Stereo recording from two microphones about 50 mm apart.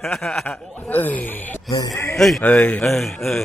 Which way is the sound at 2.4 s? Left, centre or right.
Left.